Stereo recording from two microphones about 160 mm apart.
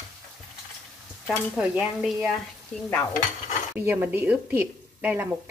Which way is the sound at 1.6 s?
5° right (ahead or behind).